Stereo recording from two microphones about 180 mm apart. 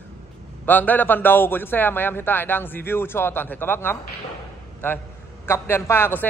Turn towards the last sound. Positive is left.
turn(degrees=15)  # may be behind; listen again after turning